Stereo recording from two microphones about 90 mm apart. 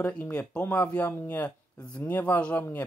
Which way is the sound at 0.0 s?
15° left (ahead or behind).